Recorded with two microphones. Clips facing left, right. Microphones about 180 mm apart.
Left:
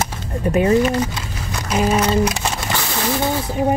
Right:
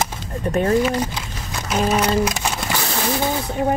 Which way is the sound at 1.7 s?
5° left (ahead or behind).